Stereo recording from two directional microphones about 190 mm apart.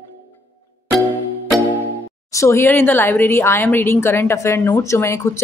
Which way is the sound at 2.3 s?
15° left (ahead or behind).